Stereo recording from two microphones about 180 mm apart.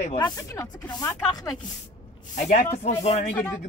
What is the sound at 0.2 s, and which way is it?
Speech, 15° left (ahead or behind).